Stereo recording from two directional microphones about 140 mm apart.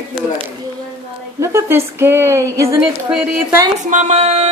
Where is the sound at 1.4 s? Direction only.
20° right (ahead or behind).